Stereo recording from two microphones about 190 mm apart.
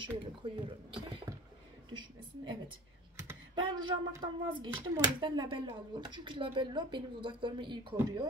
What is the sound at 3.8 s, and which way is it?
Speech, 25° right (ahead or behind).